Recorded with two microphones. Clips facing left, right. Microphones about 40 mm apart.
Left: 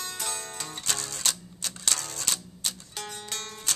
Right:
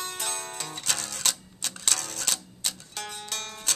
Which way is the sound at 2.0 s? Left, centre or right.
Right.